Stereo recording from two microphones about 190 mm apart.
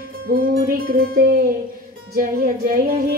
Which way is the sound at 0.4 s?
50° right (ahead or behind).